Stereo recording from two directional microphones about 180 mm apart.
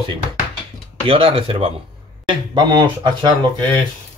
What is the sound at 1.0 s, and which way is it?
Speech, 30° right (ahead or behind).